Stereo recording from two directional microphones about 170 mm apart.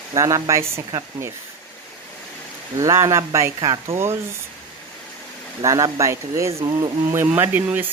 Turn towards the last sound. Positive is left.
turn(degrees=-10)  # may be behind; listen again after turning